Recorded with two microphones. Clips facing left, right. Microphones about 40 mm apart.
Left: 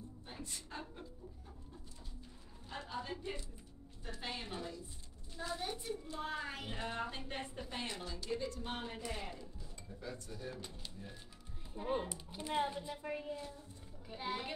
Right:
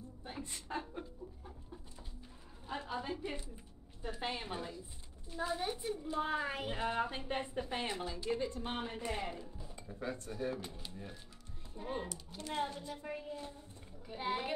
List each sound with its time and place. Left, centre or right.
0.3 s a sound: right
2.8 s a sound: centre
4.0 s a woman's voice: centre
10.0 s speech: right
10.5 s a child's voice: centre
11.7 s speech: centre
14.1 s a child's voice: centre